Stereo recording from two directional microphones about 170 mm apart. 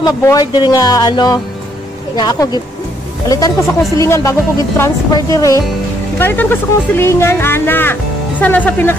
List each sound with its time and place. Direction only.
0.0 s speech: 20° left (ahead or behind)